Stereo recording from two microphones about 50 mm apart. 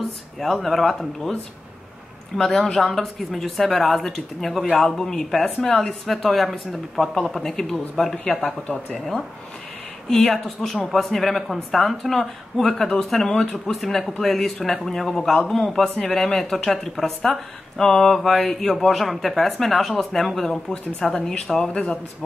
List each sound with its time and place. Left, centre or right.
0.0 s speech: centre
8.4 s speech: centre
10.3 s speech: centre